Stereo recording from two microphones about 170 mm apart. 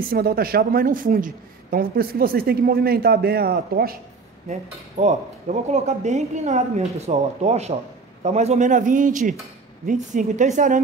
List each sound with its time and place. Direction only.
0.0 s speech: 60° right (ahead or behind)
4.5 s a man's voice: 40° right (ahead or behind)